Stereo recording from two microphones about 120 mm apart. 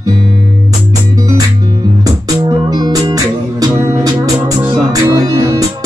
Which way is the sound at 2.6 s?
35° right (ahead or behind).